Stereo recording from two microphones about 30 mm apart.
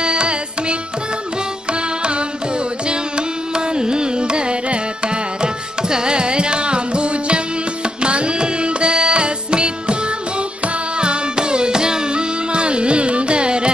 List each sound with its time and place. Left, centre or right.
0.0 s carnatic music: right
1.7 s music: right
2.9 s carnatic music: right
8.0 s music: right
11.0 s music: right